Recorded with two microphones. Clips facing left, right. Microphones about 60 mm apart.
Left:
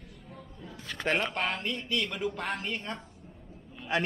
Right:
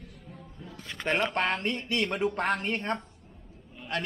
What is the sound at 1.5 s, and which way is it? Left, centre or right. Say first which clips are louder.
Speech: right 3 dB; right.